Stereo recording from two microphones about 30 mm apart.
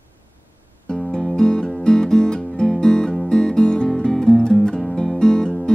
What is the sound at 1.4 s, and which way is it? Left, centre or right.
Music, left.